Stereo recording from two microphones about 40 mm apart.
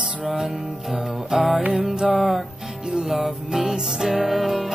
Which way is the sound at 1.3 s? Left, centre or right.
Centre.